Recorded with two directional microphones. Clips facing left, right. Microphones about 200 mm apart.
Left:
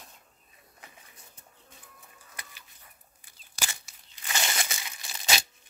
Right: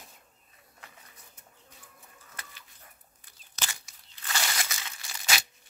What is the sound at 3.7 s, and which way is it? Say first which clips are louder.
Crushing: even; 20° left (ahead or behind).